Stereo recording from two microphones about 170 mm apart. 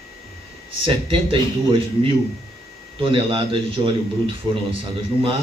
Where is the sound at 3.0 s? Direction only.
30° right (ahead or behind).